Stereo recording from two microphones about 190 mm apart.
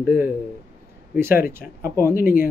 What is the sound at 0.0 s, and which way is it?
Speech, 10° right (ahead or behind).